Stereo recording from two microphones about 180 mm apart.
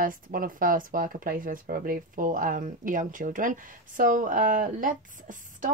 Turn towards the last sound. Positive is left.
turn(degrees=-45)  # may be behind; listen again after turning